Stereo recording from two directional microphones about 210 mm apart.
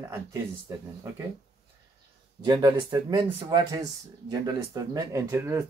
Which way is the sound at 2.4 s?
20° right (ahead or behind).